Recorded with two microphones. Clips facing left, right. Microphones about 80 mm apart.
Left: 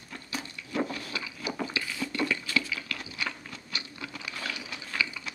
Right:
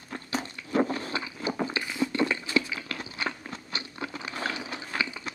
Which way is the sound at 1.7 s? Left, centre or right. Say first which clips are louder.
Right 5 dB; right.